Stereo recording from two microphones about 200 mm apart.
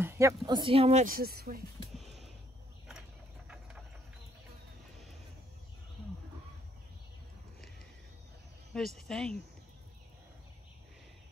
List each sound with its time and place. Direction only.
0.0 s speech: 15° right (ahead or behind); by 1.6 s 50° right (ahead or behind)
2.0 s a sound: centre (ahead or behind)
8.7 s speech: 5° left (ahead or behind)